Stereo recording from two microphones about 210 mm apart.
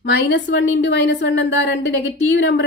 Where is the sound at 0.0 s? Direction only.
55° left (ahead or behind).